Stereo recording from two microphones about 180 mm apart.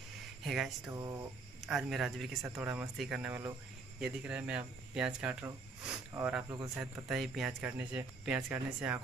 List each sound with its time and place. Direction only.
0.4 s speech: centre (ahead or behind)